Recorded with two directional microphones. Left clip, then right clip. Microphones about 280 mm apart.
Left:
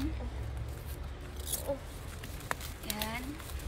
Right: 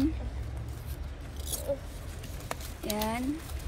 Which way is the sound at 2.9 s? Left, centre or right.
Centre.